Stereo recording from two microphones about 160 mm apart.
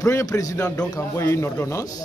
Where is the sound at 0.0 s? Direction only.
20° left (ahead or behind).